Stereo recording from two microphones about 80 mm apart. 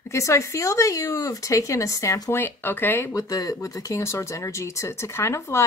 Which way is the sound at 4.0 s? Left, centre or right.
Left.